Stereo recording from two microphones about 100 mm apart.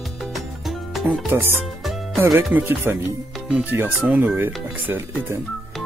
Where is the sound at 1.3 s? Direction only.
25° right (ahead or behind).